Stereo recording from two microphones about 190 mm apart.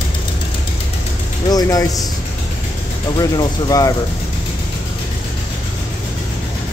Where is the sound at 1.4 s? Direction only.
20° left (ahead or behind).